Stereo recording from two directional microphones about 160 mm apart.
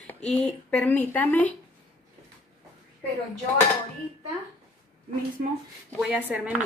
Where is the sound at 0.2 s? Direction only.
40° left (ahead or behind).